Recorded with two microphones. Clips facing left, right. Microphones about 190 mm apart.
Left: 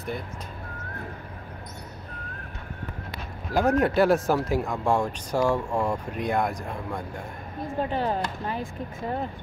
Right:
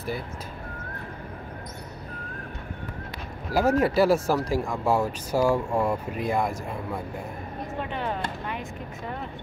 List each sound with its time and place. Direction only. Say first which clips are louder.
3.5 s speech: even; centre (ahead or behind)
7.8 s speech: left 5 dB; 35° left (ahead or behind)